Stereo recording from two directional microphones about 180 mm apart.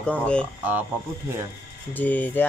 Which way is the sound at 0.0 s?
5° left (ahead or behind).